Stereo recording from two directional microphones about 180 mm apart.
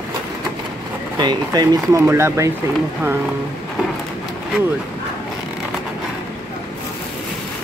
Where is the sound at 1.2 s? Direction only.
25° right (ahead or behind).